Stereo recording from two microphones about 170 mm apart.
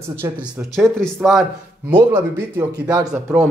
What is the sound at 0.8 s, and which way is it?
Speech, 5° left (ahead or behind).